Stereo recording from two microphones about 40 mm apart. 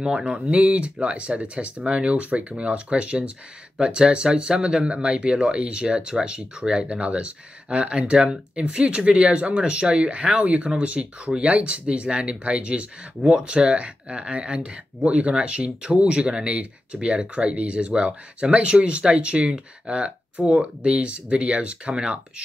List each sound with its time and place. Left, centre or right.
0.0 s speech: right